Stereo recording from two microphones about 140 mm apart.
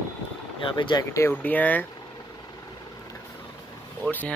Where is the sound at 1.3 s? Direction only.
10° left (ahead or behind).